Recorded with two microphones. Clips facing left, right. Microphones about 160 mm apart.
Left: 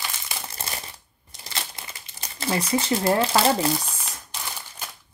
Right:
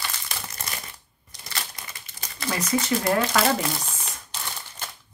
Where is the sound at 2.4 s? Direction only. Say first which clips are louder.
Left 2 dB; 30° left (ahead or behind).